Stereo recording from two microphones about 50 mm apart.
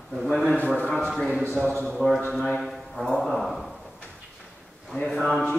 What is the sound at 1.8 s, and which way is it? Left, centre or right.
Speech, centre.